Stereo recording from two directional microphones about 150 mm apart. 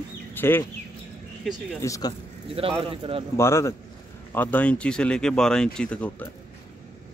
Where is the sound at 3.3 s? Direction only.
20° left (ahead or behind).